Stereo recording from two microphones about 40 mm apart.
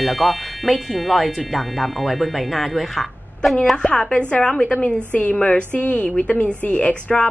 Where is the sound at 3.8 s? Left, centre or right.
Centre.